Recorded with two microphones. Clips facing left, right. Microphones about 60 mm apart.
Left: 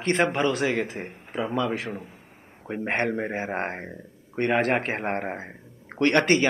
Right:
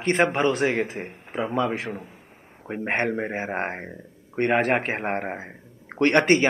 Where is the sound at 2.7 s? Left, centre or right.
Centre.